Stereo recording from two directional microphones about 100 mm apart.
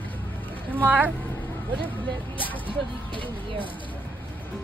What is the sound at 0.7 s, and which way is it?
Speech, 20° right (ahead or behind).